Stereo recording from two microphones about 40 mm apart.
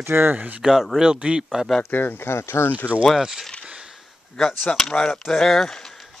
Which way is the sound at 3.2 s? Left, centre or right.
Centre.